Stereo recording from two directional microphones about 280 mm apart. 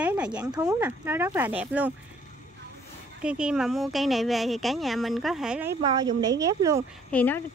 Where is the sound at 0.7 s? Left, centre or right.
Centre.